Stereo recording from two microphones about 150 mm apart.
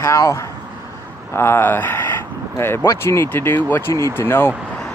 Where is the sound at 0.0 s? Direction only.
20° left (ahead or behind).